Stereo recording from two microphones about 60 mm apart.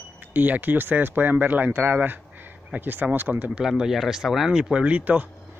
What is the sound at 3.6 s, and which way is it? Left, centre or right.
Speech, centre.